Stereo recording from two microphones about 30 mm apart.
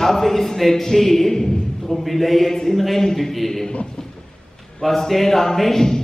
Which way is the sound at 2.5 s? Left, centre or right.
Centre.